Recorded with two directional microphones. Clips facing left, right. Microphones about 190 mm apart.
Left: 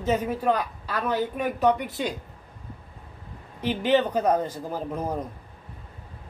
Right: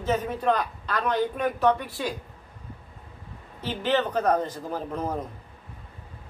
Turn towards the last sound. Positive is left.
turn(degrees=10)  # may be behind; listen again after turning